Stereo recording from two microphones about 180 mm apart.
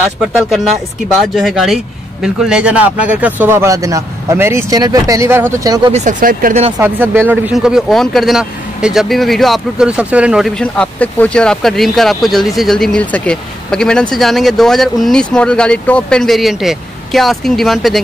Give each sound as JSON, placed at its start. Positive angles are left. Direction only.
{"t": 1.0, "sound": "speech", "side_deg": 0}
{"t": 5.9, "sound": "speech", "side_deg": -40}
{"t": 6.8, "sound": "speech", "side_deg": -10}
{"t": 10.6, "sound": "speech", "side_deg": 5}